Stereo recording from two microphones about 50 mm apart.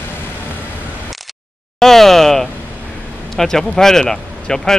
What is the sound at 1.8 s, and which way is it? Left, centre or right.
Speech, centre.